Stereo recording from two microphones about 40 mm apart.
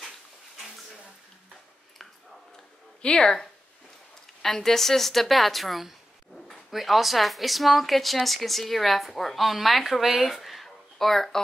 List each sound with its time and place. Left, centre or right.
3.0 s speech: left
4.4 s a woman's voice: centre